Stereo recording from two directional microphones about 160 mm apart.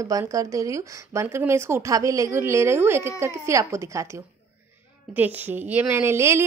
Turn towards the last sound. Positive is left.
turn(degrees=-15)  # may be behind; listen again after turning